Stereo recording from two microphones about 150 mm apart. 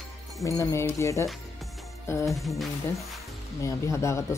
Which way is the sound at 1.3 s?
Centre (ahead or behind).